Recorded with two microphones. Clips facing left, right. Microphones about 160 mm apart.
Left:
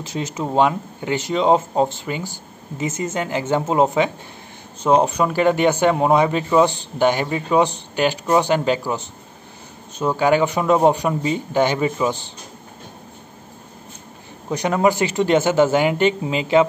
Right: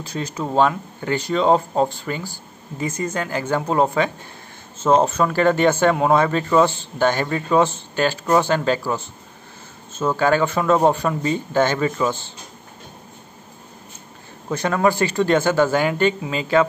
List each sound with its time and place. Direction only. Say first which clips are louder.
0.0 s speech: left 1 dB; 20° left (ahead or behind)
14.5 s speech: left 1 dB; 20° left (ahead or behind)